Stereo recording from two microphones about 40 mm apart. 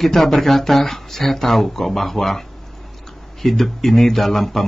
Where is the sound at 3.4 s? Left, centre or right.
Centre.